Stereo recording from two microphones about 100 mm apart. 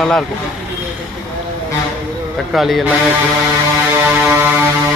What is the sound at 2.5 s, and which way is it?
Speech, centre (ahead or behind).